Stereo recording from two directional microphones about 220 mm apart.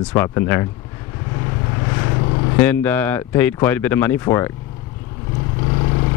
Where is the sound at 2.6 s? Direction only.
10° left (ahead or behind).